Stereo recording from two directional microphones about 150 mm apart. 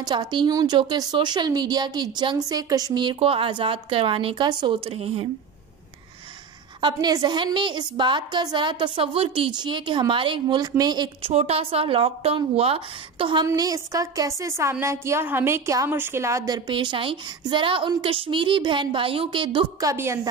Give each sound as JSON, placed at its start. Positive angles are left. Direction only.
{"t": 0.0, "sound": "a woman's voice", "side_deg": -30}
{"t": 6.8, "sound": "a woman's voice", "side_deg": -30}
{"t": 11.3, "sound": "a woman's voice", "side_deg": -40}
{"t": 13.5, "sound": "a woman's voice", "side_deg": -20}
{"t": 19.9, "sound": "a woman's voice", "side_deg": -20}